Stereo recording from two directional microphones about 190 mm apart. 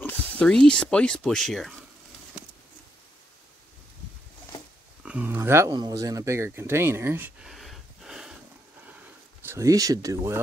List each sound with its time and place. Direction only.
0.0 s speech: 5° left (ahead or behind)
5.0 s speech: 10° right (ahead or behind)
9.4 s speech: 15° right (ahead or behind)